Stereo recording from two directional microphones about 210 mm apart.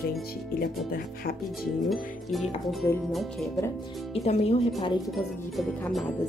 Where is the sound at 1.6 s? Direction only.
Centre (ahead or behind).